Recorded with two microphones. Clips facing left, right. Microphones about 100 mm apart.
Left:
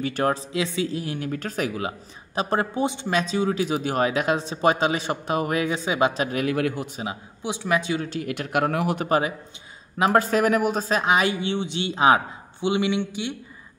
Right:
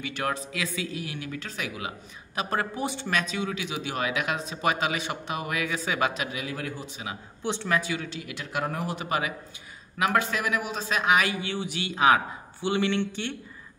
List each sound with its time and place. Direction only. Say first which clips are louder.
0.0 s speech: left 7 dB; 40° left (ahead or behind)
6.3 s speech: left 10 dB; 65° left (ahead or behind)
7.4 s speech: left 3 dB; 15° left (ahead or behind)
8.1 s speech: left 8 dB; 50° left (ahead or behind)
9.0 s speech: left 6 dB; 35° left (ahead or behind)
12.6 s speech: left 3 dB; 15° left (ahead or behind)